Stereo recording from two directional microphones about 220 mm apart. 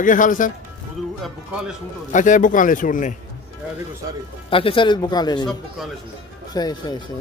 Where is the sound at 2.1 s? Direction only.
35° left (ahead or behind).